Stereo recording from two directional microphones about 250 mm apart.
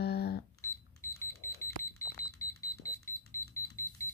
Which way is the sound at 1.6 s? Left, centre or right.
Centre.